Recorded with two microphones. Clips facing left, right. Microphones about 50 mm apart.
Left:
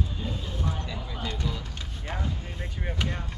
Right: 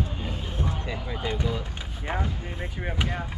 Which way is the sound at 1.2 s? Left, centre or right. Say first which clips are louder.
Right 4 dB; centre.